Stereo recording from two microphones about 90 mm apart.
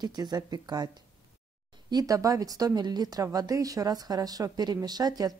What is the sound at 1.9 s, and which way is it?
Speech, 45° right (ahead or behind).